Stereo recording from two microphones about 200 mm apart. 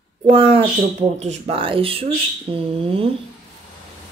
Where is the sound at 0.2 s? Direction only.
30° right (ahead or behind).